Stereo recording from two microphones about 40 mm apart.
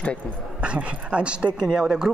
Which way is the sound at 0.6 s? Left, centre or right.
Right.